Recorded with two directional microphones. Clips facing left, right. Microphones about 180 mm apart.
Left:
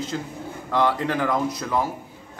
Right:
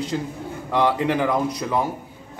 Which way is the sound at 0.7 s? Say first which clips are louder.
Right 2 dB; 15° right (ahead or behind).